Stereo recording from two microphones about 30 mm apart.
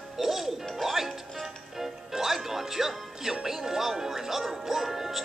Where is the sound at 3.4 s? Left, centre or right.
Centre.